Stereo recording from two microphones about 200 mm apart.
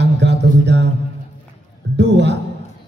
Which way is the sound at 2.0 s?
60° right (ahead or behind).